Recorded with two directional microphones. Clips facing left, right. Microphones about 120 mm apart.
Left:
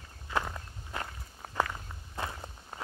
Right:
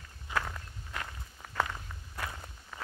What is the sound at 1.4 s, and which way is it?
Walk, 40° left (ahead or behind).